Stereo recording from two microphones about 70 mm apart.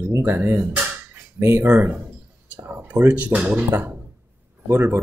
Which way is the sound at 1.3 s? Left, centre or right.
Right.